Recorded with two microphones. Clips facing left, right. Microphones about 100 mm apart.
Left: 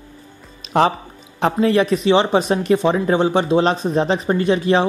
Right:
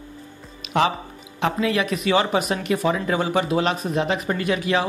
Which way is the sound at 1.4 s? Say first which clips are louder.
Left 6 dB; 35° left (ahead or behind).